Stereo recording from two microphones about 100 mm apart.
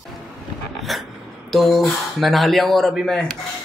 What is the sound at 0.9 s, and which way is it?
Speech, centre (ahead or behind).